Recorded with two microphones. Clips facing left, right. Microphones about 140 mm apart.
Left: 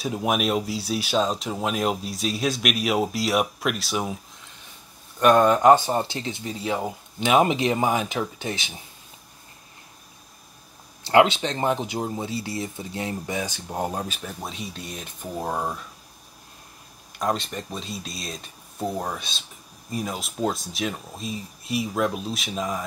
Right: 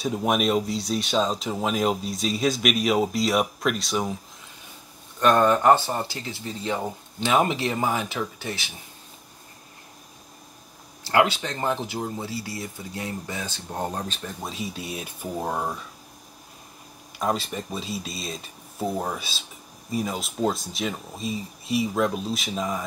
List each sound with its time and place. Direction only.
0.0 s speech: centre (ahead or behind)
5.2 s speech: 15° left (ahead or behind)
11.1 s speech: 20° left (ahead or behind); by 15.8 s centre (ahead or behind)
17.2 s speech: 5° right (ahead or behind)